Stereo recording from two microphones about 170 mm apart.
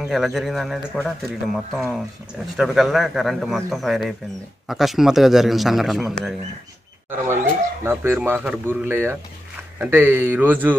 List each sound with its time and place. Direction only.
0.0 s a man's voice: centre (ahead or behind)
7.8 s speech: 15° right (ahead or behind)